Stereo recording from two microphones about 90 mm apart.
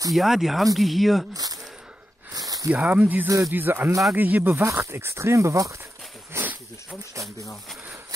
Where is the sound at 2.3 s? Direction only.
40° right (ahead or behind).